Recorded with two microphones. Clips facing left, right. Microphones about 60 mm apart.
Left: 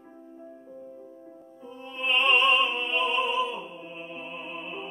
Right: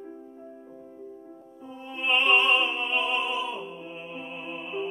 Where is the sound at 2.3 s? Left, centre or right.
Right.